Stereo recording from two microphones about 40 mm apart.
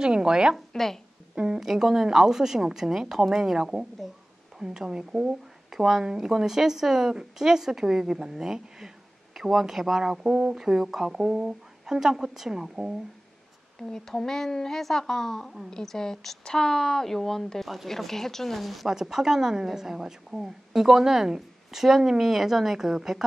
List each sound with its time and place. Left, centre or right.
0.0 s a woman's voice: centre
1.6 s speech: centre
5.7 s speech: centre
13.7 s a woman's voice: centre
18.9 s speech: centre